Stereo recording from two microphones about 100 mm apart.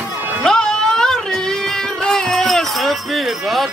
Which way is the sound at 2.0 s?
5° left (ahead or behind).